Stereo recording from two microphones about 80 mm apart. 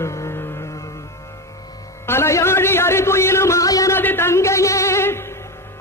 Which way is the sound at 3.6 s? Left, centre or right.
Left.